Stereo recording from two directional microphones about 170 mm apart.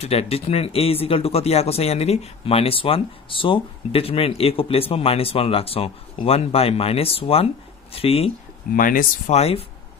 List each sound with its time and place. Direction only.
0.0 s speech: 35° left (ahead or behind)
8.7 s speech: 55° left (ahead or behind)
9.3 s speech: 35° left (ahead or behind)